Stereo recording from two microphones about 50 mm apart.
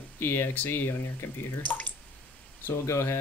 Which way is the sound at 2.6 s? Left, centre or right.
Left.